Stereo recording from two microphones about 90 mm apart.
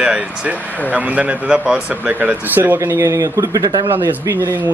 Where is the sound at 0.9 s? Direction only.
15° right (ahead or behind).